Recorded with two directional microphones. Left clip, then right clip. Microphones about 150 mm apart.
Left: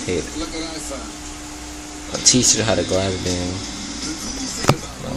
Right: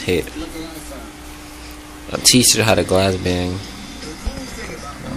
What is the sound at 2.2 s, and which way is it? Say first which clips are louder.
Speech: right 3 dB; 25° right (ahead or behind).